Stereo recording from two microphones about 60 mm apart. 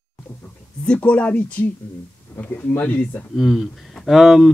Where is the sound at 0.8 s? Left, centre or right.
Left.